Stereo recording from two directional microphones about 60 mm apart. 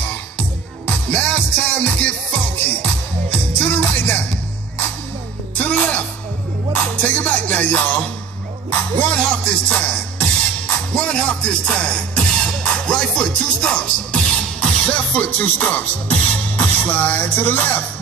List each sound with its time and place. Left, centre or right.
0.8 s music: left
5.6 s music: left
9.1 s music: centre; by 17.8 s left